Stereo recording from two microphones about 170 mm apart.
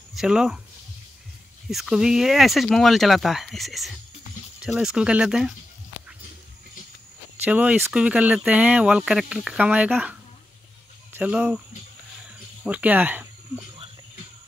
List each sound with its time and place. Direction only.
0.1 s speech: 5° right (ahead or behind)
1.7 s speech: centre (ahead or behind)
7.4 s speech: 10° right (ahead or behind)
11.1 s speech: 10° right (ahead or behind)
12.6 s speech: 10° right (ahead or behind)